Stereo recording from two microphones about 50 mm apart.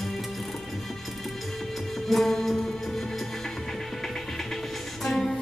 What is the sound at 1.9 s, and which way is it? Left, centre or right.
Music, centre.